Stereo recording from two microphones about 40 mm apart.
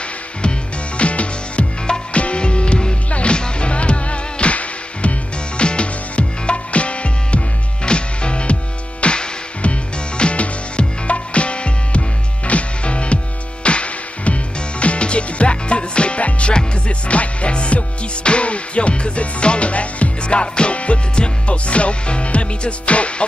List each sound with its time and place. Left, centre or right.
0.4 s music: left